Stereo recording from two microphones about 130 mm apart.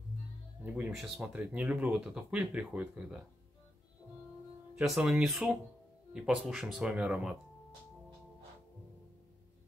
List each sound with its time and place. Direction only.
0.9 s speech: centre (ahead or behind)
4.7 s speech: 5° right (ahead or behind)